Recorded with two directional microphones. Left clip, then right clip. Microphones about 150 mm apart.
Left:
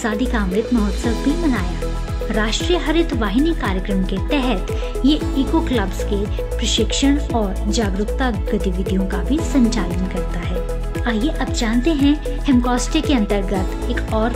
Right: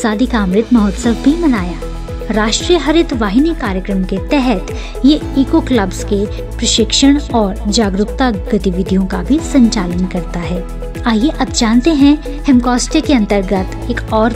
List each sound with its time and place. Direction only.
0.0 s speech: 40° right (ahead or behind)
2.2 s speech: 45° right (ahead or behind)
11.1 s speech: 45° right (ahead or behind)